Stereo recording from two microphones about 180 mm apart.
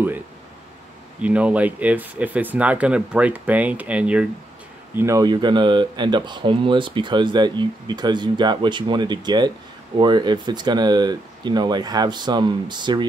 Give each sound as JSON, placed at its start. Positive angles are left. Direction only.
{"t": 1.2, "sound": "speech", "side_deg": -5}